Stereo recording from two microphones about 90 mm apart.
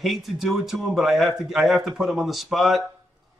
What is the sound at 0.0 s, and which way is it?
Speech, centre (ahead or behind).